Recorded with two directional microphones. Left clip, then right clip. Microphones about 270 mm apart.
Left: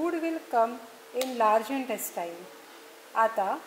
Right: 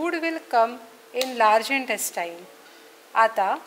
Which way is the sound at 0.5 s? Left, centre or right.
Centre.